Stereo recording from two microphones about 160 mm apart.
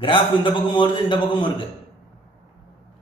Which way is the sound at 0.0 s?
30° left (ahead or behind).